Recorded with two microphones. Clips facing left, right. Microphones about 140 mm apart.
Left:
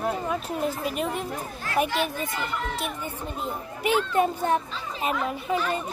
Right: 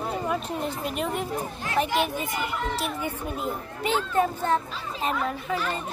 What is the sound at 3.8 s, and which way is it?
A child's voice, 10° left (ahead or behind).